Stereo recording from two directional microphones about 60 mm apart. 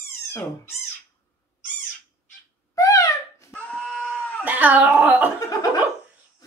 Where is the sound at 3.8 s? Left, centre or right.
Centre.